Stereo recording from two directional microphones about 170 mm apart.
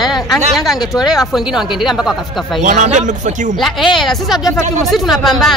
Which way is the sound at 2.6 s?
45° right (ahead or behind).